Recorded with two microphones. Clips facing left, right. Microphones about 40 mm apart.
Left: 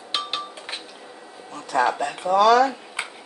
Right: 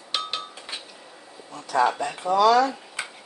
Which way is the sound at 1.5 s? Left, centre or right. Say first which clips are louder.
Even; left.